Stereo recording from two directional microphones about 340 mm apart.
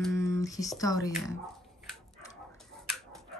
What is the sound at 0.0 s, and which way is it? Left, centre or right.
Speech, centre.